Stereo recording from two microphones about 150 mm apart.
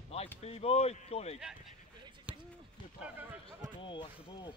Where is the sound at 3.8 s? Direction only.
35° left (ahead or behind).